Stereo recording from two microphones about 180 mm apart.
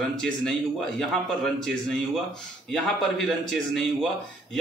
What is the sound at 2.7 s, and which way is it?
A man's voice, centre (ahead or behind).